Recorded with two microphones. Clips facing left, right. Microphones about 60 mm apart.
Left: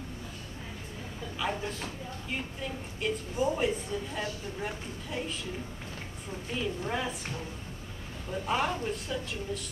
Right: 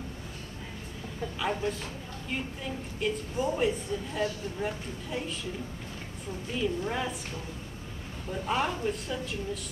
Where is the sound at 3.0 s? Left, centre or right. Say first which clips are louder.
Even; centre.